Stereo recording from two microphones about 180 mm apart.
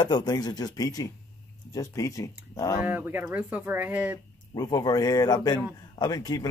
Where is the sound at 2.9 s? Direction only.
10° right (ahead or behind).